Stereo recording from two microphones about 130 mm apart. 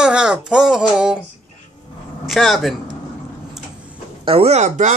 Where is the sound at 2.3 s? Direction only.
Centre (ahead or behind).